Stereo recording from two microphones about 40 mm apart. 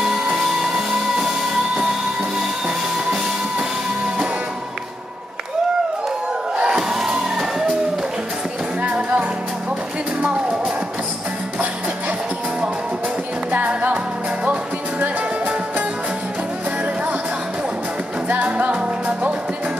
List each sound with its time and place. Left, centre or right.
0.0 s music: centre
3.5 s music: right
6.9 s music: centre
8.8 s music: right
10.2 s music: right
18.3 s music: right